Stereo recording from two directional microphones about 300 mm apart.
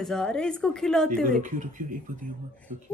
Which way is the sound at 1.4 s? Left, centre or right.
Right.